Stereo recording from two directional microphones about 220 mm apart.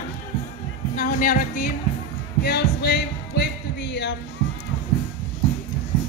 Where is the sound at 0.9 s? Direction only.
40° left (ahead or behind).